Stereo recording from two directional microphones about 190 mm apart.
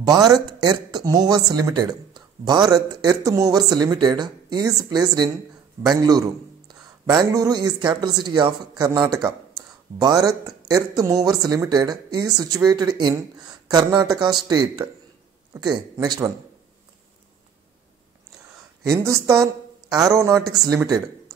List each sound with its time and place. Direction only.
0.0 s speech: 20° right (ahead or behind)
18.9 s a man's voice: 15° right (ahead or behind)